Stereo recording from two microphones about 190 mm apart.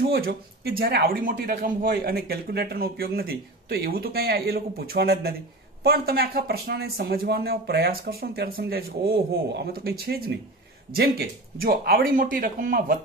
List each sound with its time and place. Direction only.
0.1 s speech: 55° right (ahead or behind)